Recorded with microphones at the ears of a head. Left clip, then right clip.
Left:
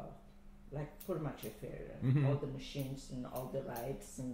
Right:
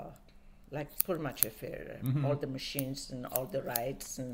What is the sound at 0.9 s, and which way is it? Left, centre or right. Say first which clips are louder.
Speech: right 6 dB; right.